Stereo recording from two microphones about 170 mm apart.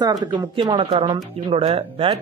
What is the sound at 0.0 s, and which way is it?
Speech, 25° right (ahead or behind).